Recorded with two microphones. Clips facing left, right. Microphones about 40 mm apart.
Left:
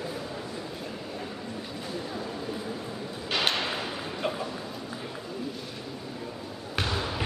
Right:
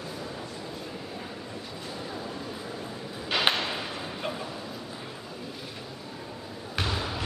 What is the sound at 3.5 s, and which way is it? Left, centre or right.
Ping, right.